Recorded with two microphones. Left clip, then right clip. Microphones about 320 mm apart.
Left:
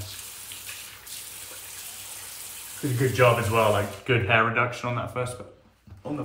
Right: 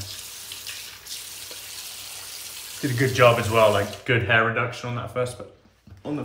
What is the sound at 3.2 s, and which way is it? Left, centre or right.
Speech, centre.